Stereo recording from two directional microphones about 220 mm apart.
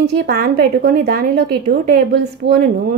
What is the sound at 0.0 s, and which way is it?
A woman's voice, 45° right (ahead or behind).